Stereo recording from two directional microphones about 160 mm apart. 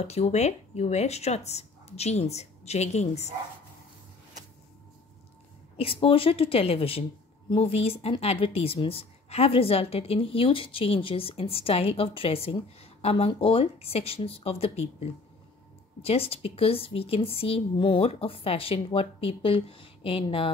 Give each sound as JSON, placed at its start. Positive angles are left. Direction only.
{"t": 0.0, "sound": "speech", "side_deg": 40}
{"t": 5.8, "sound": "a woman's voice", "side_deg": 35}